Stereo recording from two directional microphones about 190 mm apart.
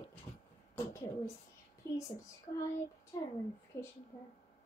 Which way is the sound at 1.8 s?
15° left (ahead or behind).